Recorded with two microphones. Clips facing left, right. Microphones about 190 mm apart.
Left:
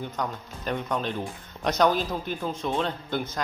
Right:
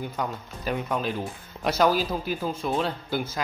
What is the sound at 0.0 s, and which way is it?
Speech, 5° right (ahead or behind).